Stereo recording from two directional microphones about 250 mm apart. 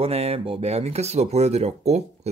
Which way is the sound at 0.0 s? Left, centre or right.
Right.